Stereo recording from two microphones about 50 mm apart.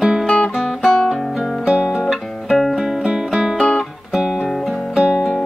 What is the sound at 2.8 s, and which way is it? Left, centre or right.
Music, centre.